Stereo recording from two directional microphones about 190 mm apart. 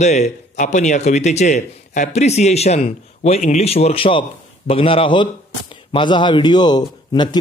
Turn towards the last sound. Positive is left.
turn(degrees=20)  # may be behind; listen again after turning